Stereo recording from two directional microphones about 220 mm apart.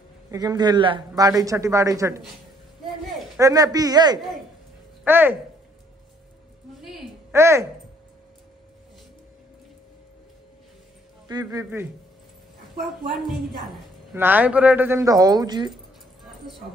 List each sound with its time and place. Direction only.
0.3 s a man's voice: 15° right (ahead or behind)
3.3 s a man's voice: 15° right (ahead or behind)
7.3 s a man's voice: 10° right (ahead or behind)
11.2 s a man's voice: 15° right (ahead or behind)
13.1 s a woman's voice: centre (ahead or behind); by 15.7 s 20° right (ahead or behind)